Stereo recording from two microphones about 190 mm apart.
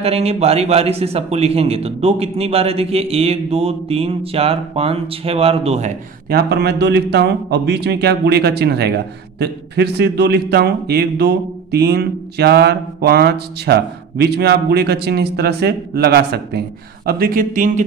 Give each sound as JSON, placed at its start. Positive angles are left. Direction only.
{"t": 0.0, "sound": "a man's voice", "side_deg": -30}
{"t": 6.2, "sound": "a man's voice", "side_deg": -55}